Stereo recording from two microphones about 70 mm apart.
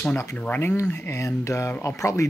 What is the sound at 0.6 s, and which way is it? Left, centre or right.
Speech, left.